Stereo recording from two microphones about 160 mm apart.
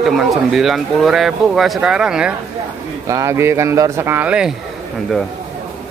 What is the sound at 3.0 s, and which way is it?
Speech, 20° right (ahead or behind).